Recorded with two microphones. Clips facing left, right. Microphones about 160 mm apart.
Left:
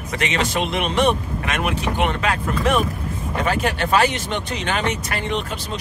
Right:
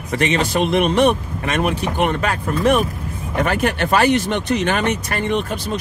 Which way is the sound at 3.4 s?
55° right (ahead or behind).